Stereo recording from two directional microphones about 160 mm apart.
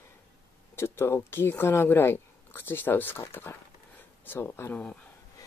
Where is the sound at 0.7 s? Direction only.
15° left (ahead or behind).